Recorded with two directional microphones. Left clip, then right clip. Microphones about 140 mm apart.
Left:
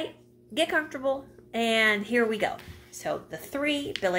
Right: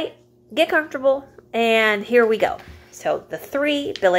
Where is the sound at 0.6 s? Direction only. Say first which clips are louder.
Right 8 dB; 5° right (ahead or behind).